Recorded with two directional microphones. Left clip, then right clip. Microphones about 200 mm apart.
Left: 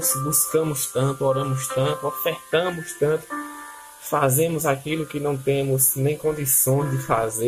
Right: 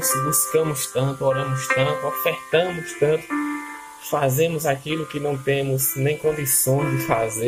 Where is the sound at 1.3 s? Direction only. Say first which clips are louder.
Right 3 dB; 30° right (ahead or behind).